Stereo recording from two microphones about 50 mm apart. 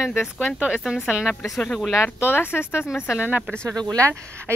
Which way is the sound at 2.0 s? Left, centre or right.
Left.